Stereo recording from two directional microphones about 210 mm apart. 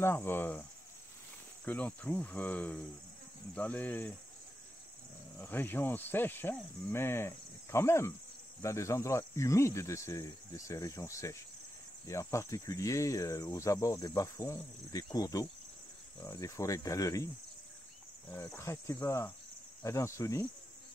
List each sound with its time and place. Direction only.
0.0 s cricket: 10° left (ahead or behind)
5.4 s cricket: 10° left (ahead or behind)
18.3 s cricket: 10° left (ahead or behind)